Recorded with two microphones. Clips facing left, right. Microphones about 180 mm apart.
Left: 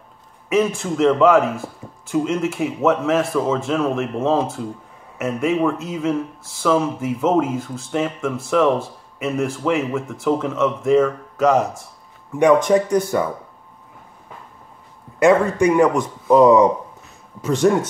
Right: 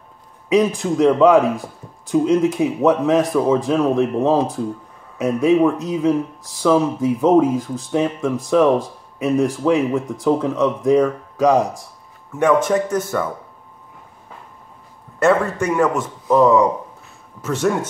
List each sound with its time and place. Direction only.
0.5 s a man's voice: 15° right (ahead or behind)
12.4 s speech: 15° left (ahead or behind)
15.6 s speech: 15° left (ahead or behind)